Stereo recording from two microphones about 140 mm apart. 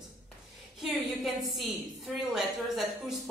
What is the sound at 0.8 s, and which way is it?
A woman's voice, centre (ahead or behind).